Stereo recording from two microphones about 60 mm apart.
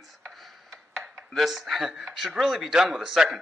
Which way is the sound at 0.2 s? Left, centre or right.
Centre.